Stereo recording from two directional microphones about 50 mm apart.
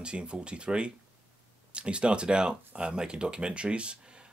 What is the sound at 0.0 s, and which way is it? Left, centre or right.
Speech, right.